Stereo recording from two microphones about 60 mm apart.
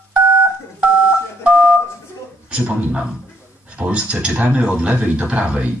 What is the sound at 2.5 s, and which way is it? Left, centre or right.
A man's voice, right.